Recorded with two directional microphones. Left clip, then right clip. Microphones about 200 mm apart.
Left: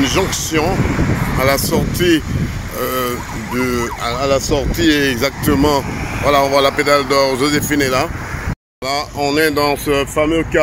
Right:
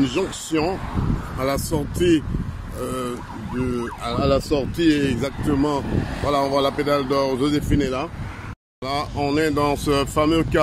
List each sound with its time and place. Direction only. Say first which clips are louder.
0.0 s speech: left 7 dB; 5° left (ahead or behind)
4.0 s speech: left 3 dB; 15° right (ahead or behind)
4.8 s speech: left 7 dB; centre (ahead or behind)